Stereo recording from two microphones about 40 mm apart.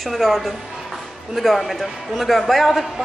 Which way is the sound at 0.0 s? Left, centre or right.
Centre.